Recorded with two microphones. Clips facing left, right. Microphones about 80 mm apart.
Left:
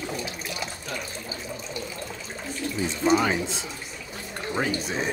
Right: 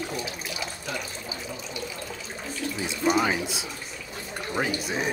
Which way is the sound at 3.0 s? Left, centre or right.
Centre.